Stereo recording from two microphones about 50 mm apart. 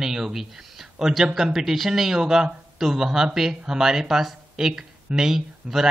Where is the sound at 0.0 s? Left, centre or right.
Centre.